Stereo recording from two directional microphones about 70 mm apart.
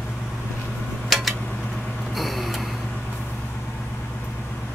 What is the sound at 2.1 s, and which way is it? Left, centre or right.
Vehicle, centre.